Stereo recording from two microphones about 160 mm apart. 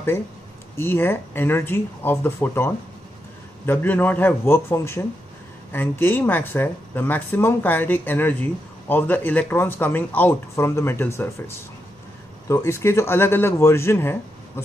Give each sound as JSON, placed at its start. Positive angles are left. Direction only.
{"t": 0.7, "sound": "speech", "side_deg": 15}